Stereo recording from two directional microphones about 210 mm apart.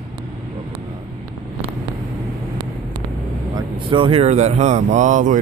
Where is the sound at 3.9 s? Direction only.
25° right (ahead or behind).